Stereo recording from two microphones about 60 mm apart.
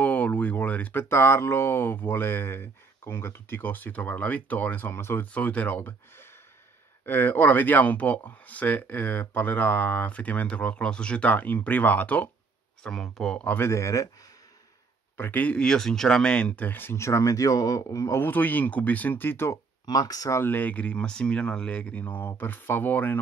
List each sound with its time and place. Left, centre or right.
0.0 s a sound: left
1.0 s speech: left
4.9 s speech: left
5.2 s speech: left
11.3 s speech: left
12.8 s speech: centre
13.6 s speech: left
15.1 s speech: left
15.4 s speech: centre
16.6 s speech: left
16.9 s speech: left
18.1 s speech: left
19.5 s speech: left
20.4 s speech: left